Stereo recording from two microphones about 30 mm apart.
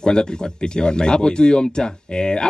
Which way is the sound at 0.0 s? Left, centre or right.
Left.